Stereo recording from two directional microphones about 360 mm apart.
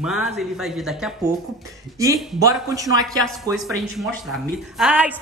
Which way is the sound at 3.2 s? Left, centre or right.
Centre.